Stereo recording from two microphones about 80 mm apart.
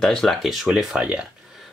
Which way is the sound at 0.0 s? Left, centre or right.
Centre.